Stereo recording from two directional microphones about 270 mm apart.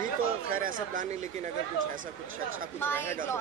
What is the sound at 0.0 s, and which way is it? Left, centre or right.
Speech, right.